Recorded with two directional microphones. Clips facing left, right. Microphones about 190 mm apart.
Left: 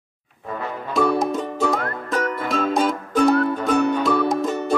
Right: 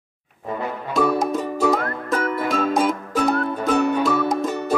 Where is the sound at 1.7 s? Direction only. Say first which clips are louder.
Right 2 dB; centre (ahead or behind).